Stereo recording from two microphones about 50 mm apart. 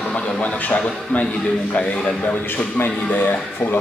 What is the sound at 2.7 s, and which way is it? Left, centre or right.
Speech, left.